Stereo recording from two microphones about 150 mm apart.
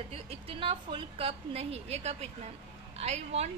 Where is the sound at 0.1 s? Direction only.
40° right (ahead or behind).